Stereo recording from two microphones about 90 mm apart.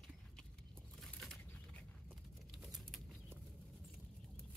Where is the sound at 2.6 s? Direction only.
Centre (ahead or behind).